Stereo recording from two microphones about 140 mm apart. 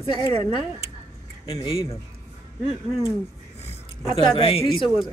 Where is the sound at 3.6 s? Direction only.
45° left (ahead or behind).